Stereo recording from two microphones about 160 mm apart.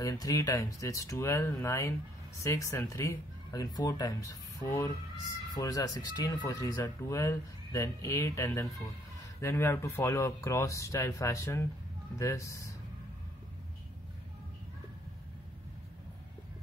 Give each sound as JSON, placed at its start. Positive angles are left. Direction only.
{"t": 0.0, "sound": "speech", "side_deg": 20}